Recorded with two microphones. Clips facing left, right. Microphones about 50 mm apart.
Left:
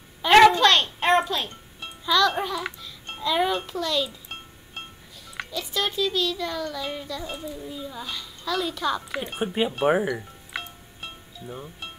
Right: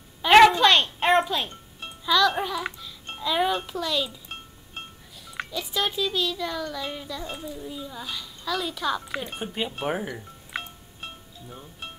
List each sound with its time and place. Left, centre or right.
0.2 s a sound: centre
2.0 s a child's voice: centre
5.3 s a child's voice: centre
9.2 s speech: centre
11.4 s speech: centre